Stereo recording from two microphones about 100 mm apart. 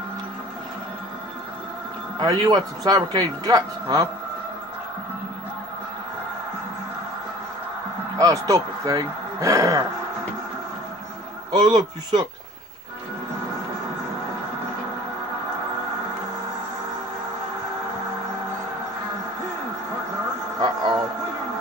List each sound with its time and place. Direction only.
2.1 s speech: 40° right (ahead or behind)
8.2 s speech: 35° right (ahead or behind)
11.5 s a man's voice: 45° right (ahead or behind)
20.5 s a sound: 45° right (ahead or behind)